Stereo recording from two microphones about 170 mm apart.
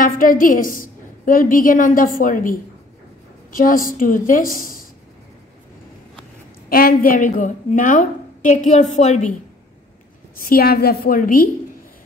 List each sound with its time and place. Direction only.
0.0 s a woman's voice: 55° left (ahead or behind)
6.7 s a woman's voice: 60° left (ahead or behind); by 9.3 s 45° left (ahead or behind)
10.4 s a woman's voice: 60° left (ahead or behind)